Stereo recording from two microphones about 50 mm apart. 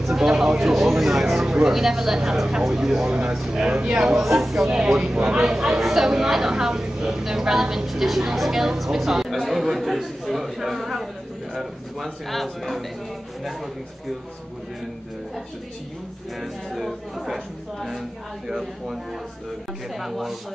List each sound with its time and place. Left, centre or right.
0.0 s a woman's voice: centre
4.1 s a woman's voice: centre
16.3 s speech: centre
18.5 s a woman's voice: centre
20.0 s speech: centre